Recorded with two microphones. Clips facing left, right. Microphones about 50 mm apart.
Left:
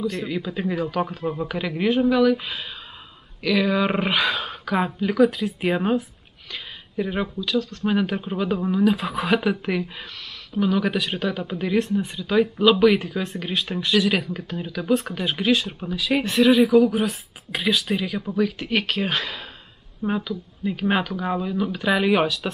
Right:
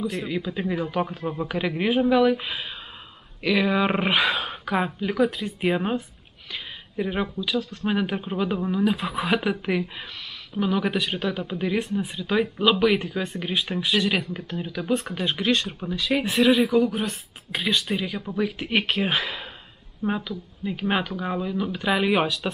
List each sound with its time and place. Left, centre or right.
0.1 s speech: centre
18.3 s speech: centre